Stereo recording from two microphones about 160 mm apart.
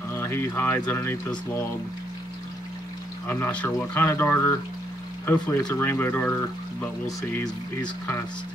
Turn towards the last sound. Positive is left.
turn(degrees=15)  # may be behind; listen again after turning